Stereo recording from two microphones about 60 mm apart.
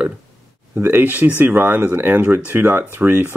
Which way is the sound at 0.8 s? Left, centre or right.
Right.